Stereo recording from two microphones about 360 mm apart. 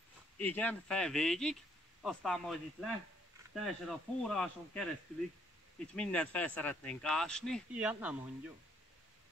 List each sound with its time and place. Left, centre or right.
0.4 s speech: centre
5.9 s speech: centre